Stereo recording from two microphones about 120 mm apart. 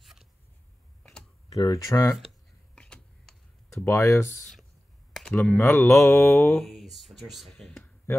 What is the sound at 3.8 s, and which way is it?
Speech, 25° left (ahead or behind).